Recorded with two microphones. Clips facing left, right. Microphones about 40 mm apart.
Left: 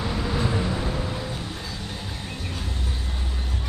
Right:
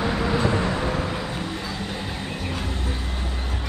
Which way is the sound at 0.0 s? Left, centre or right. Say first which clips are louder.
Right 4 dB; right.